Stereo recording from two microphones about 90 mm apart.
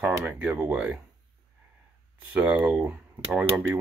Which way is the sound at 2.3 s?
20° right (ahead or behind).